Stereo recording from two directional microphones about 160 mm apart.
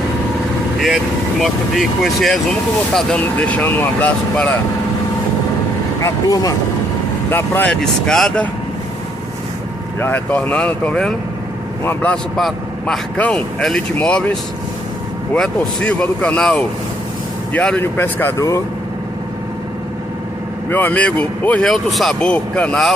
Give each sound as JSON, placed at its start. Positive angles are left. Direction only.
{"t": 0.7, "sound": "a man's voice", "side_deg": 0}
{"t": 6.0, "sound": "a man's voice", "side_deg": 20}
{"t": 9.9, "sound": "a man's voice", "side_deg": 15}
{"t": 15.3, "sound": "a man's voice", "side_deg": 5}
{"t": 20.7, "sound": "a man's voice", "side_deg": 10}